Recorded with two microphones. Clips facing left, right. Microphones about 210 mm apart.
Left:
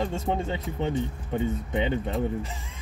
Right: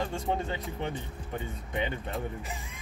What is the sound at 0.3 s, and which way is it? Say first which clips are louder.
A man's voice: left 3 dB; 25° left (ahead or behind).